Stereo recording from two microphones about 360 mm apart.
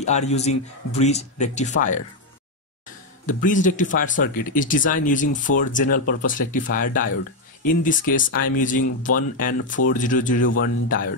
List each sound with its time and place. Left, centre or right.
0.0 s speech: centre
3.3 s speech: left